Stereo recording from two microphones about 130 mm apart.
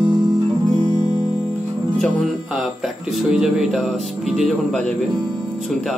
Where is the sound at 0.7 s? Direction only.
30° right (ahead or behind).